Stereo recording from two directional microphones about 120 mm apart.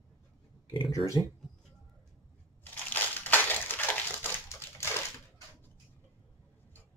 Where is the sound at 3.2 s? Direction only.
15° left (ahead or behind).